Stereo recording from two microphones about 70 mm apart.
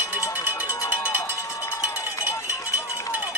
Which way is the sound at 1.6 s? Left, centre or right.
Left.